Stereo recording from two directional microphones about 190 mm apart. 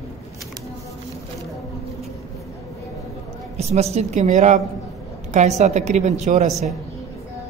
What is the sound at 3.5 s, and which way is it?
Speech, 35° right (ahead or behind).